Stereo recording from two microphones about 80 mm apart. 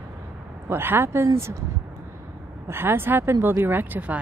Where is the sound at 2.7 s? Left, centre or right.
Right.